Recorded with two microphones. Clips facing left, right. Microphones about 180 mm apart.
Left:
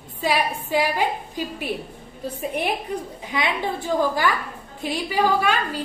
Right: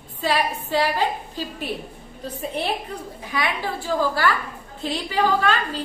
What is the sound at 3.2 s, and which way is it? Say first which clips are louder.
A woman's voice: even; 20° left (ahead or behind).